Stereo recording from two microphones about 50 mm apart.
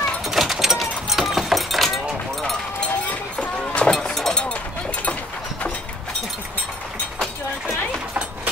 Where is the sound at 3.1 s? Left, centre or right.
Left.